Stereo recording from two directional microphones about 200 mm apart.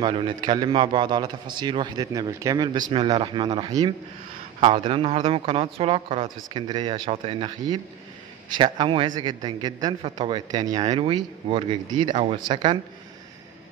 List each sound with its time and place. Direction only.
0.0 s a man's voice: 25° right (ahead or behind)